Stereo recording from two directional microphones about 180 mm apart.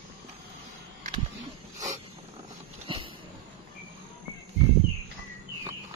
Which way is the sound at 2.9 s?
30° right (ahead or behind).